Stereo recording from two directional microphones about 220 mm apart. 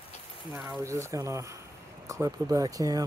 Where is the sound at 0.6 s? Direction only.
10° right (ahead or behind).